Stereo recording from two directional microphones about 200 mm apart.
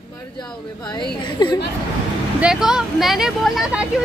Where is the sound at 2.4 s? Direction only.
5° right (ahead or behind).